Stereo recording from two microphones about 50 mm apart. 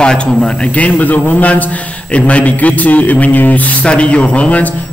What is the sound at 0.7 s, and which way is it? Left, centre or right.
Speech, left.